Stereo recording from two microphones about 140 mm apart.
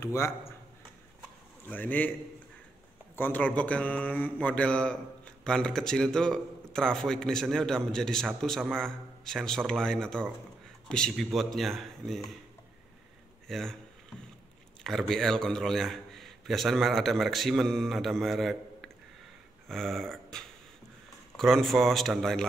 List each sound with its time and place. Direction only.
0.0 s speech: 20° left (ahead or behind)
1.7 s a man's voice: 10° left (ahead or behind)
3.2 s a man's voice: 10° left (ahead or behind)
13.5 s a man's voice: 5° left (ahead or behind)
14.8 s a man's voice: 5° left (ahead or behind)
19.7 s a sound: centre (ahead or behind)
21.4 s a man's voice: centre (ahead or behind)